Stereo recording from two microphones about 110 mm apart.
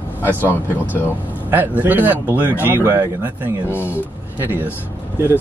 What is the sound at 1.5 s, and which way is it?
Speech, 15° right (ahead or behind).